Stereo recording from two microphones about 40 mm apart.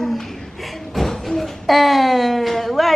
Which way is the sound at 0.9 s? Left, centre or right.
Centre.